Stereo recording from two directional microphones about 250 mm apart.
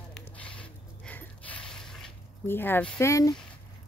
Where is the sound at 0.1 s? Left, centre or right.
Centre.